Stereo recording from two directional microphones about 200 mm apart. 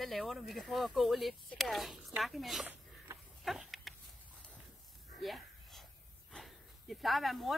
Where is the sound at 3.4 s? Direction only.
Centre (ahead or behind).